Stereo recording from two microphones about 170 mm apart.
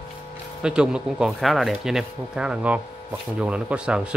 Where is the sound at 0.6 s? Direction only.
5° right (ahead or behind).